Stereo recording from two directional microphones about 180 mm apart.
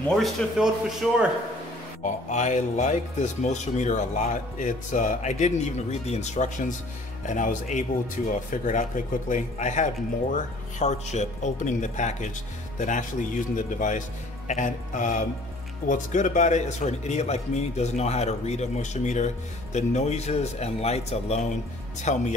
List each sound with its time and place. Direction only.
0.1 s speech: centre (ahead or behind)
2.2 s a man's voice: 40° left (ahead or behind)